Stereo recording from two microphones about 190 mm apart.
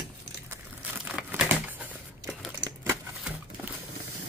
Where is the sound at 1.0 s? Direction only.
5° right (ahead or behind).